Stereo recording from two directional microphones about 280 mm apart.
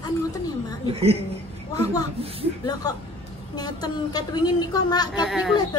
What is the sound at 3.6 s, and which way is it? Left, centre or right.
A woman's voice, centre.